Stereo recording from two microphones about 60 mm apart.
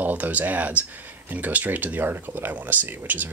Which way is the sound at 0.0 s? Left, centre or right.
Right.